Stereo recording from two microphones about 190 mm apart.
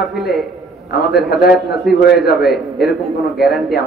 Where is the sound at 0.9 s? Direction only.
55° left (ahead or behind).